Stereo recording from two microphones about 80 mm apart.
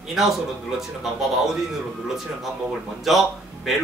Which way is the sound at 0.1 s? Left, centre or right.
Centre.